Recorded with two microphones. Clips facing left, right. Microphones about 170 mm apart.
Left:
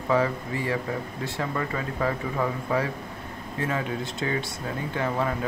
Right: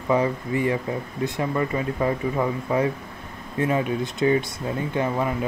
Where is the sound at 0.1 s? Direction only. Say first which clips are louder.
Right 3 dB; 20° right (ahead or behind).